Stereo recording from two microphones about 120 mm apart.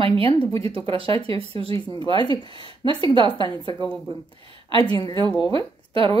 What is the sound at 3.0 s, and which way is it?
Speech, 45° right (ahead or behind).